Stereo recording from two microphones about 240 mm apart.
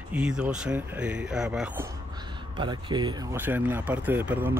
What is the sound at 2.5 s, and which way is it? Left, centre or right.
Speech, centre.